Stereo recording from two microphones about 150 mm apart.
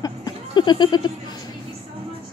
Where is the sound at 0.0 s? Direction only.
30° left (ahead or behind).